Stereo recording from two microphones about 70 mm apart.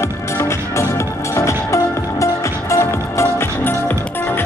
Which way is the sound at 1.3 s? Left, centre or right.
Left.